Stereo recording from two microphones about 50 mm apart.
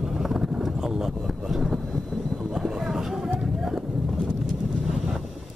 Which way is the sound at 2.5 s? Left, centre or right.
Centre.